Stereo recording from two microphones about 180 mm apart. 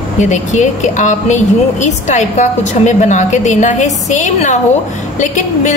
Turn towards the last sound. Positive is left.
turn(degrees=40)  # may be behind; listen again after turning